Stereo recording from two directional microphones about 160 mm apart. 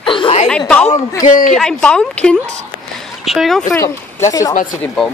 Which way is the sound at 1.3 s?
50° left (ahead or behind).